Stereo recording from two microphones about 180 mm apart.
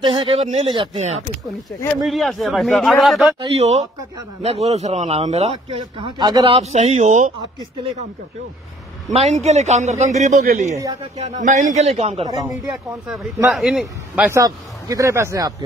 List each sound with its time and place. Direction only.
0.0 s speech: 30° right (ahead or behind)
2.0 s speech: centre (ahead or behind)
3.5 s speech: 40° right (ahead or behind)
9.1 s speech: 40° right (ahead or behind)
13.1 s speech: 5° right (ahead or behind)
14.4 s speech: 20° right (ahead or behind)